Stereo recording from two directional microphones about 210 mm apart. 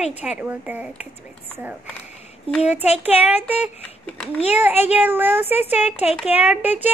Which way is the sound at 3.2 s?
10° right (ahead or behind).